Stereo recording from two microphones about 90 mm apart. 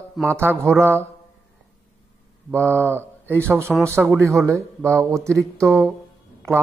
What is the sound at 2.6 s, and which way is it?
Speech, 25° right (ahead or behind).